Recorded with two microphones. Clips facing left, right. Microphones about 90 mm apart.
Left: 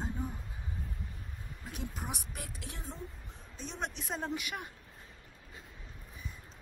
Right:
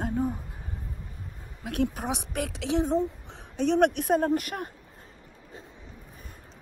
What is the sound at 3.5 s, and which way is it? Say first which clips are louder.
Speech: right 18 dB; 65° right (ahead or behind).